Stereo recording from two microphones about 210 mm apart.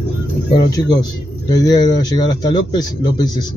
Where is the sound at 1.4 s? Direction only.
20° left (ahead or behind).